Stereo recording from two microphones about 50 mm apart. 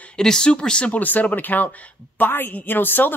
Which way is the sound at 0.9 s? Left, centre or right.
Left.